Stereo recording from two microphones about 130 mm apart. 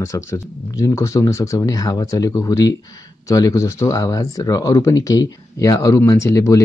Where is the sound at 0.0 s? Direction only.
20° left (ahead or behind).